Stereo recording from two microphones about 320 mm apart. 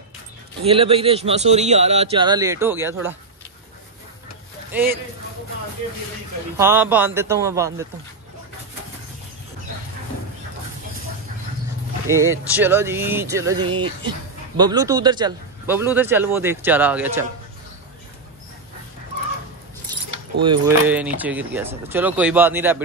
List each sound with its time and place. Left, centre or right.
0.6 s speech: centre
4.7 s speech: centre
6.5 s speech: centre
12.1 s speech: centre
20.4 s speech: centre